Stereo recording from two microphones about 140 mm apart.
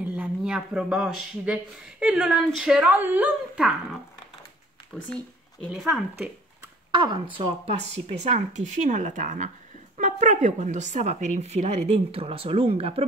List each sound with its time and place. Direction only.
0.0 s speech: 10° right (ahead or behind)
5.7 s speech: centre (ahead or behind)
7.0 s speech: 40° right (ahead or behind)